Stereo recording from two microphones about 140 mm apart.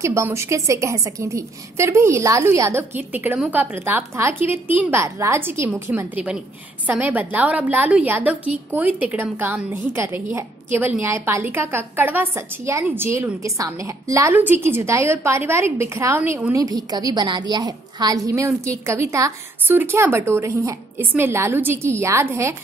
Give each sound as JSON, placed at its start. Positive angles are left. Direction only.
{"t": 0.0, "sound": "a woman's voice", "side_deg": -20}
{"t": 16.5, "sound": "a woman's voice", "side_deg": -25}